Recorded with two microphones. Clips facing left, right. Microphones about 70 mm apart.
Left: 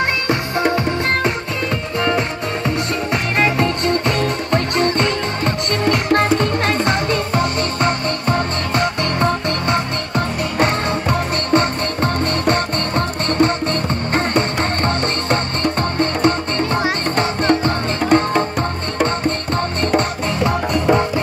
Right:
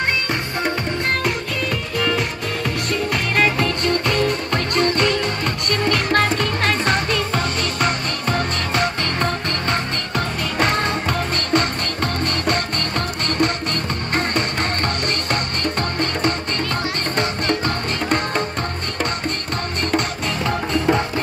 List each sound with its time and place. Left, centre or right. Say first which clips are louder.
0.3 s music: left 5 dB; centre
2.0 s music: left 3 dB; left
17.5 s music: left 5 dB; left